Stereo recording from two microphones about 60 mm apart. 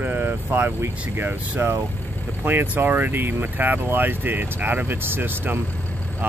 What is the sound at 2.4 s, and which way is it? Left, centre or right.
Speech, right.